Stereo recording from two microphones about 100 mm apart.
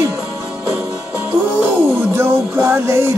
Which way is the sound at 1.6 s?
25° right (ahead or behind).